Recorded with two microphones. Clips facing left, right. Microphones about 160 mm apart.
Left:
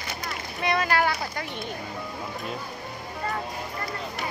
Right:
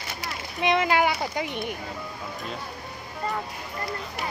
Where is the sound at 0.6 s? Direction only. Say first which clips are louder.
Right 2 dB; 20° right (ahead or behind).